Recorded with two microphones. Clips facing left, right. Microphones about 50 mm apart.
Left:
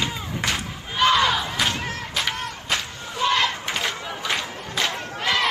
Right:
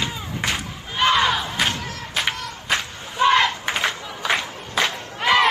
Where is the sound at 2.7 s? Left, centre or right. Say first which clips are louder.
Right 6 dB; right.